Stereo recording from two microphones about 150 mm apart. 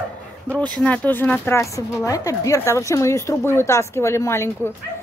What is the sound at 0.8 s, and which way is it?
A woman's voice, 10° left (ahead or behind).